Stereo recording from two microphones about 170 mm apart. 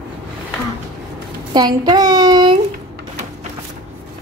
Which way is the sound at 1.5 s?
25° right (ahead or behind).